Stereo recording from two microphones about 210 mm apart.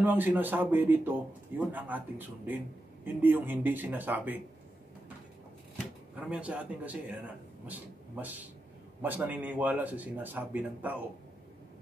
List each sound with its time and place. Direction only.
0.0 s a man's voice: 10° right (ahead or behind)
6.1 s a man's voice: 5° right (ahead or behind)
7.6 s a sound: 10° right (ahead or behind)
9.0 s a man's voice: 10° right (ahead or behind)